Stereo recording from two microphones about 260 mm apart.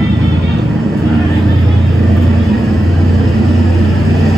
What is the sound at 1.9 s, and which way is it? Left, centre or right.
Vehicle, centre.